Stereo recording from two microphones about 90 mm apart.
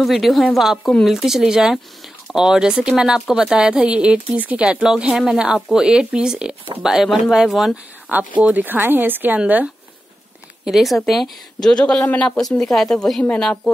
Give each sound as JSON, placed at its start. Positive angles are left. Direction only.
{"t": 0.0, "sound": "speech", "side_deg": 0}
{"t": 10.6, "sound": "speech", "side_deg": -5}